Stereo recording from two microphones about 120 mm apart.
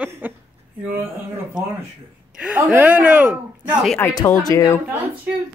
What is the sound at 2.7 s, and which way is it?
Speech, 15° right (ahead or behind).